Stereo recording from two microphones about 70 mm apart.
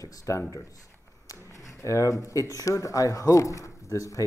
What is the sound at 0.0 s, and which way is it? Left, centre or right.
Speech, left.